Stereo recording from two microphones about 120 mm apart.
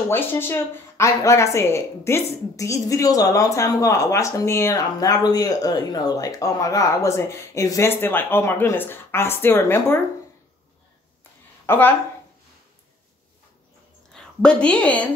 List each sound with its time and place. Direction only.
0.1 s speech: 20° left (ahead or behind)
11.6 s speech: 15° left (ahead or behind)
14.1 s a woman's voice: 10° left (ahead or behind)